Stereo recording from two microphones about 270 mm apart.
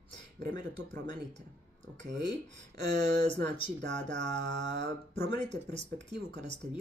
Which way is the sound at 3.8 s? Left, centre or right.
Right.